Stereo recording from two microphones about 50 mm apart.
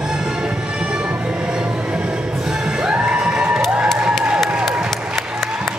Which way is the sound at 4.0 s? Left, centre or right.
Centre.